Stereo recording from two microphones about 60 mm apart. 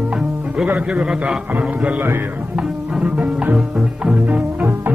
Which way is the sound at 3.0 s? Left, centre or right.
Right.